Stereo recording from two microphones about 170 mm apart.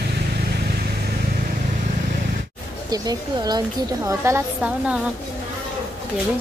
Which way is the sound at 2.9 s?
20° right (ahead or behind).